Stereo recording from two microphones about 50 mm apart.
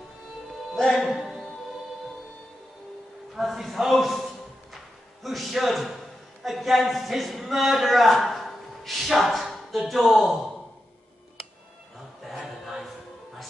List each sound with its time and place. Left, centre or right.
0.7 s music: centre
1.0 s music: centre
3.3 s a man's voice: centre
12.2 s choir: centre